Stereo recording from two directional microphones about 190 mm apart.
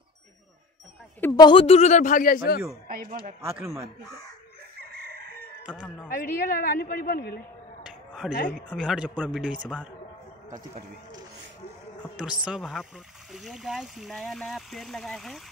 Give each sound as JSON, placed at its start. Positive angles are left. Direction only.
{"t": 1.2, "sound": "speech", "side_deg": 20}
{"t": 3.1, "sound": "speech", "side_deg": -50}
{"t": 3.3, "sound": "a man's voice", "side_deg": -15}
{"t": 5.6, "sound": "speech", "side_deg": -5}
{"t": 6.1, "sound": "a woman's voice", "side_deg": 50}
{"t": 7.8, "sound": "a sound", "side_deg": 0}
{"t": 8.5, "sound": "speech", "side_deg": 0}
{"t": 12.2, "sound": "speech", "side_deg": -5}